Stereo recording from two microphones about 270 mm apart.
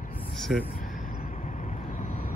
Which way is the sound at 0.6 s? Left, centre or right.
Left.